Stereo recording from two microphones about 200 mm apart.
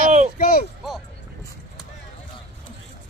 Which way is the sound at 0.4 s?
50° left (ahead or behind).